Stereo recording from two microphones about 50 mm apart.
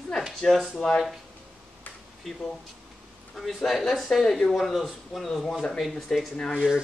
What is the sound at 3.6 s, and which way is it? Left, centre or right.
Speech, centre.